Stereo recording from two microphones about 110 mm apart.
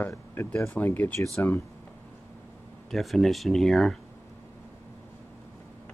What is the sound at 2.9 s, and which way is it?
Speech, centre (ahead or behind).